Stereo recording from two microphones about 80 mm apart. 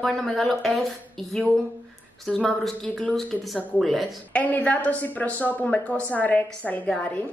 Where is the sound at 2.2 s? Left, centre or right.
Centre.